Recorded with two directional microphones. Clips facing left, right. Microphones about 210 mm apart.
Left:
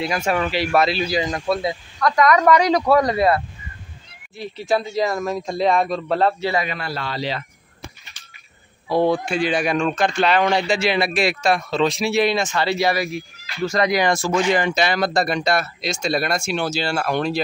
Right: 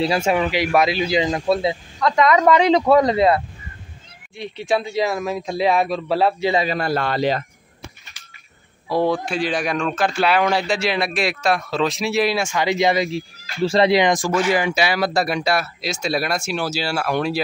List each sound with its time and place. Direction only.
0.0 s a man's voice: 30° right (ahead or behind)
0.4 s a man's voice: 15° right (ahead or behind)
4.4 s speech: centre (ahead or behind)
6.5 s a man's voice: 30° right (ahead or behind)
6.8 s a man's voice: 50° right (ahead or behind)
8.9 s speech: centre (ahead or behind)